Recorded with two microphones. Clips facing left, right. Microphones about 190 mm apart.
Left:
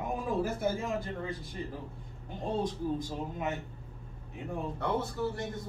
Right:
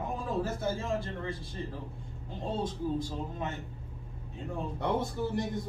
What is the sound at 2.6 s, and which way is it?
Speech, 15° left (ahead or behind).